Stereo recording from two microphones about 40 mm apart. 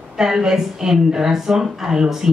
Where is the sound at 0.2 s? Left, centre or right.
Centre.